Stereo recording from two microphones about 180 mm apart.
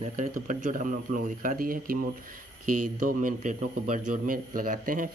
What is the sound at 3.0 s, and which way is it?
Speech, 45° right (ahead or behind).